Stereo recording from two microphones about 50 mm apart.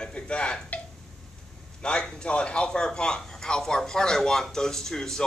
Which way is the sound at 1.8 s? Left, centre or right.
Centre.